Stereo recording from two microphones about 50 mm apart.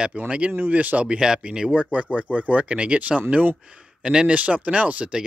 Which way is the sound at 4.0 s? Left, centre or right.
Centre.